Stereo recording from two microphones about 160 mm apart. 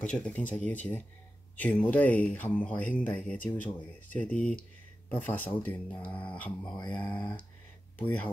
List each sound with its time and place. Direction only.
0.0 s speech: 10° left (ahead or behind)